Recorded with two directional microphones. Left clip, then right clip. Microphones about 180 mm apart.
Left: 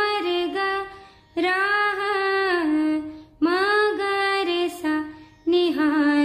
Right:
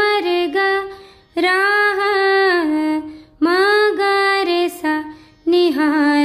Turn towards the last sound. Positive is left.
turn(degrees=-35)  # may be behind; listen again after turning